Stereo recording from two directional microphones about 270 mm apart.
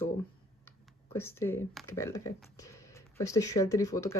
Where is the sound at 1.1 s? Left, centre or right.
Centre.